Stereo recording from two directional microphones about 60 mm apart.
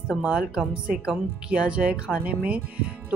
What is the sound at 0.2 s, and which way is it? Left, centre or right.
Speech, centre.